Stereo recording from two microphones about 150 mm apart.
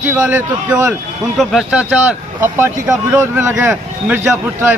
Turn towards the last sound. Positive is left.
turn(degrees=-15)  # may be behind; listen again after turning